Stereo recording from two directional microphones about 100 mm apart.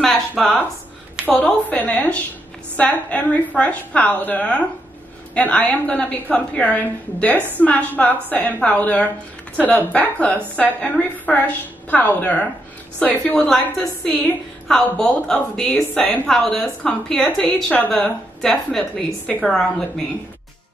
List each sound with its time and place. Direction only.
0.4 s a woman's voice: 5° left (ahead or behind)